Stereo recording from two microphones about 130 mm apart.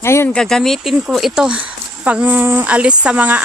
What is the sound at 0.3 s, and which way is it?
Speech, 5° left (ahead or behind).